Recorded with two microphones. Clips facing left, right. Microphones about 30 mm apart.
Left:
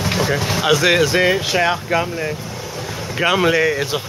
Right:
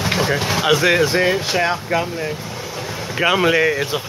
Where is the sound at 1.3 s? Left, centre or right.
Centre.